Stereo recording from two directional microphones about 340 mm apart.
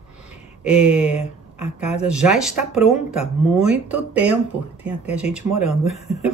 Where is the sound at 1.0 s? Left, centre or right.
Centre.